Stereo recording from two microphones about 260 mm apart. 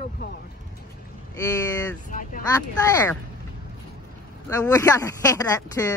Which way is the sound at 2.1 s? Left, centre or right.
Left.